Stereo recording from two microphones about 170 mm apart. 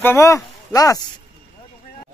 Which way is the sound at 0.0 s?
15° left (ahead or behind).